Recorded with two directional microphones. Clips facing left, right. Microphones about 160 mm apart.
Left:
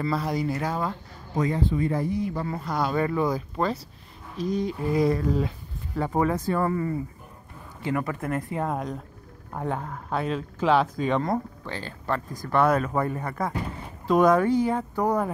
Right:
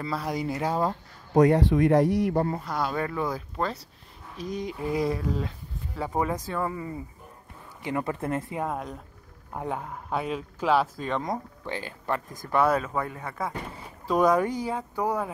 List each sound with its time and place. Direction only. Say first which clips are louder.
0.0 s speech: left 3 dB; 10° right (ahead or behind)
0.4 s speech: even; 20° right (ahead or behind)
1.3 s speech: right 6 dB; 70° right (ahead or behind)
2.6 s speech: left 3 dB; 5° right (ahead or behind)
4.4 s speech: left 5 dB; 15° right (ahead or behind)
4.9 s speech: left 5 dB; 5° right (ahead or behind)
5.9 s speech: left 4 dB; 10° right (ahead or behind)
6.7 s speech: left 7 dB; 15° right (ahead or behind)
7.8 s speech: left 1 dB; 25° right (ahead or behind)
8.5 s speech: left 3 dB; 5° right (ahead or behind)
11.2 s speech: left 4 dB; 15° right (ahead or behind)